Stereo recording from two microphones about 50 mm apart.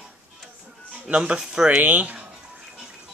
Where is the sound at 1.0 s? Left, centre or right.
Right.